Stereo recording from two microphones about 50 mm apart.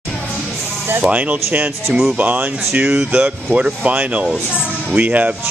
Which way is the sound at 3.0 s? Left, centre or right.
Right.